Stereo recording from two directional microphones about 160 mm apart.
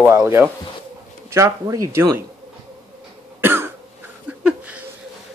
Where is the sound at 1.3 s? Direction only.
20° right (ahead or behind).